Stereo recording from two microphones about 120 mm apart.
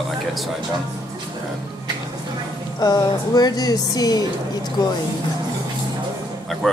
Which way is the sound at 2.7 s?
35° left (ahead or behind).